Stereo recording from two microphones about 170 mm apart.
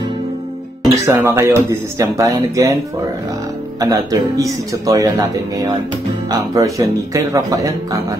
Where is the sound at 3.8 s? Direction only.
20° right (ahead or behind).